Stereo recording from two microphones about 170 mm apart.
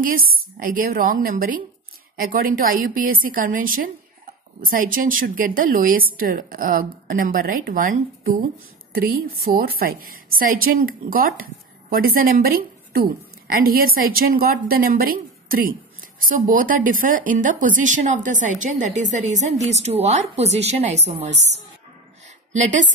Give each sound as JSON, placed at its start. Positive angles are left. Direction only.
{"t": 0.6, "sound": "a woman's voice", "side_deg": -55}
{"t": 22.5, "sound": "speech", "side_deg": -45}